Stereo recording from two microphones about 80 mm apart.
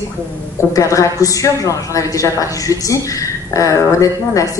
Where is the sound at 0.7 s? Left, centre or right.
Left.